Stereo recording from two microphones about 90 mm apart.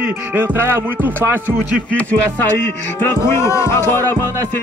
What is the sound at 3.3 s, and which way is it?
Speech, 30° left (ahead or behind).